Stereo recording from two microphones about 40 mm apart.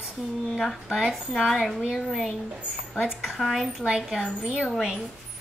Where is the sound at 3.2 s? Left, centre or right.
Centre.